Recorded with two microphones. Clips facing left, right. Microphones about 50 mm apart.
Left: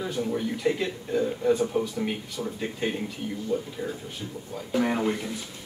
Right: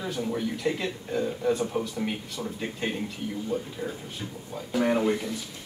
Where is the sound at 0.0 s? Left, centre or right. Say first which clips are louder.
Left 1 dB; centre.